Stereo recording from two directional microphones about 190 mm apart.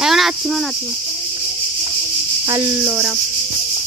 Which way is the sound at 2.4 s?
15° right (ahead or behind).